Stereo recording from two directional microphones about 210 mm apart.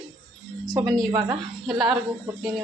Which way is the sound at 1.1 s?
20° right (ahead or behind).